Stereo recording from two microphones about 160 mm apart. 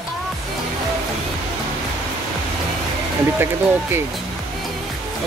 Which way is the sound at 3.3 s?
15° right (ahead or behind).